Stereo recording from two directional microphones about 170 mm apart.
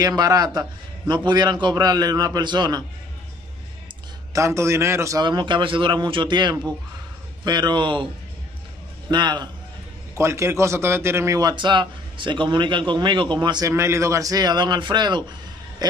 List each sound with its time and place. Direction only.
0.0 s a man's voice: 20° right (ahead or behind)
4.3 s a man's voice: 15° right (ahead or behind)
9.1 s a man's voice: 25° right (ahead or behind)
15.8 s a sound: 20° right (ahead or behind)